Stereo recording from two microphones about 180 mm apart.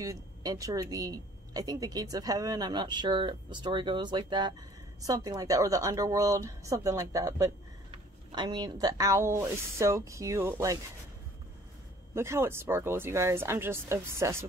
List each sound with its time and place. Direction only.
0.0 s a woman's voice: 20° right (ahead or behind)
12.1 s speech: 15° right (ahead or behind)